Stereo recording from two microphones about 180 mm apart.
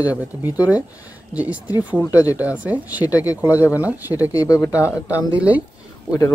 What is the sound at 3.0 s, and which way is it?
Speech, 20° left (ahead or behind).